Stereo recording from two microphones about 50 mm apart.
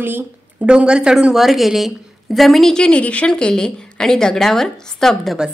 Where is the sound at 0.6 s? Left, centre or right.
Centre.